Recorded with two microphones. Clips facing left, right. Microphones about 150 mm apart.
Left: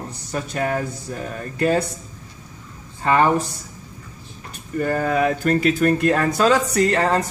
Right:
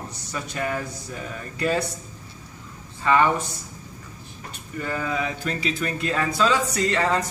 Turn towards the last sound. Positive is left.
turn(degrees=45)  # may be behind; listen again after turning